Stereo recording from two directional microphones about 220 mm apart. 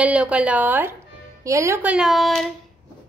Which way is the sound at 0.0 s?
5° right (ahead or behind).